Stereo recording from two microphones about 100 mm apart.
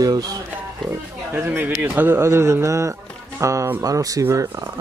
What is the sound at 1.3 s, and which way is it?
Speech, 20° right (ahead or behind).